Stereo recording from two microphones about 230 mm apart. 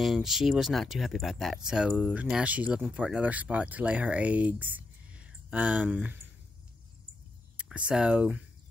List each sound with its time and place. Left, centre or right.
0.0 s speech: centre
7.5 s speech: centre